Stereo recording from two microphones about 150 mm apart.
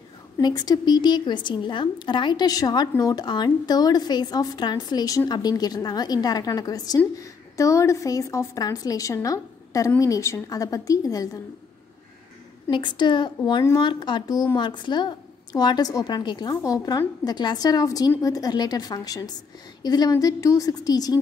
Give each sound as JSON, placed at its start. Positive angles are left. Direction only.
{"t": 0.4, "sound": "a woman's voice", "side_deg": 30}
{"t": 12.6, "sound": "a woman's voice", "side_deg": 30}